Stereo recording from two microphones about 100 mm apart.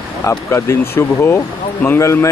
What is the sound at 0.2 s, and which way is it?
Speech, 30° left (ahead or behind).